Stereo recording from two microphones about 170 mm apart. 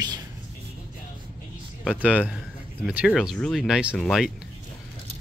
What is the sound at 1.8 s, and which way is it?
Speech, 5° right (ahead or behind).